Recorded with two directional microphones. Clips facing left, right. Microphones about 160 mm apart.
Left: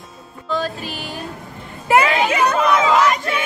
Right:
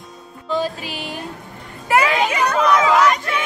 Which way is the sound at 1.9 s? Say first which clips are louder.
Left 2 dB; 25° left (ahead or behind).